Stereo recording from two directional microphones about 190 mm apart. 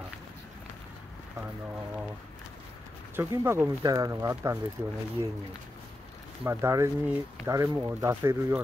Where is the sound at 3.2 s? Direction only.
10° right (ahead or behind).